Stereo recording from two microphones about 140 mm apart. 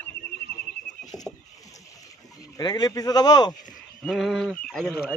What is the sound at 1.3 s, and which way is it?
Rowboat, 5° left (ahead or behind).